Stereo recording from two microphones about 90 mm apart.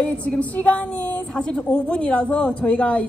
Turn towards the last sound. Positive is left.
turn(degrees=15)  # may be behind; listen again after turning